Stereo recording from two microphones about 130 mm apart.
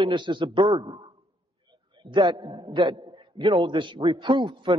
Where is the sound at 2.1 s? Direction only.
40° right (ahead or behind).